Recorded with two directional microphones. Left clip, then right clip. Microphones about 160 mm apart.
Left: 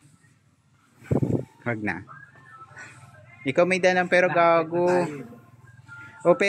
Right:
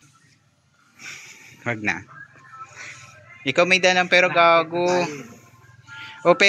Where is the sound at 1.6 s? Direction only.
15° left (ahead or behind).